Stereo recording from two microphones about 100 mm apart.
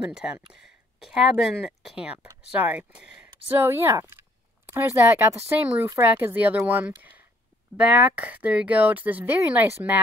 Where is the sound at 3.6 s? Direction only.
25° right (ahead or behind).